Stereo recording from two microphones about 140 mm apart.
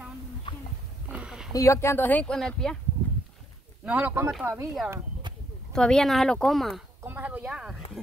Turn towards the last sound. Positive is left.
turn(degrees=-5)  # may be behind; listen again after turning